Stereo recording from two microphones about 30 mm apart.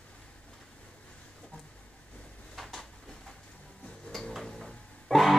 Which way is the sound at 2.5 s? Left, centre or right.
Centre.